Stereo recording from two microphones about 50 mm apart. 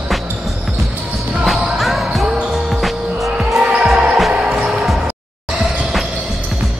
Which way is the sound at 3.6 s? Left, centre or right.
Right.